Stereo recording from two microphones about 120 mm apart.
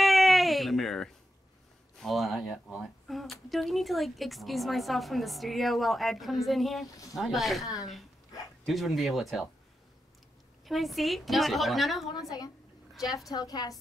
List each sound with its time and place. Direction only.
0.0 s baby cry: centre (ahead or behind)
2.0 s a woman's voice: centre (ahead or behind)
7.6 s a woman's voice: 30° left (ahead or behind)
8.6 s a woman's voice: centre (ahead or behind)
10.6 s a woman's voice: centre (ahead or behind)
12.1 s a sound: 30° left (ahead or behind)
12.9 s a woman's voice: centre (ahead or behind)
13.3 s a woman's voice: 30° left (ahead or behind)